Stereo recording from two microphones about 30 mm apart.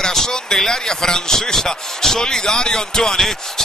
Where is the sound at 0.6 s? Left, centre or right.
Centre.